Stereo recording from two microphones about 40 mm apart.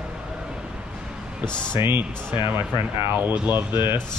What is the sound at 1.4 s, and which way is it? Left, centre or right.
Speech, left.